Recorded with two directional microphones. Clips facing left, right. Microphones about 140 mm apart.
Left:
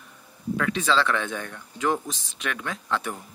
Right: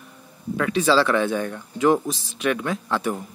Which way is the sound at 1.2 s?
30° right (ahead or behind).